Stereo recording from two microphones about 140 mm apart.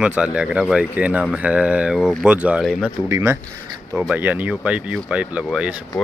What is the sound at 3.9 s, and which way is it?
Speech, 5° right (ahead or behind).